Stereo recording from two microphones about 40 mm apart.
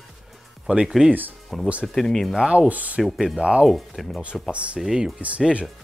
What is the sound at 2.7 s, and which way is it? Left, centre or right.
Speech, right.